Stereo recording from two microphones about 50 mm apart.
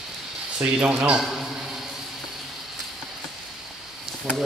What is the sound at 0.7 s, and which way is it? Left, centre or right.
Speech, right.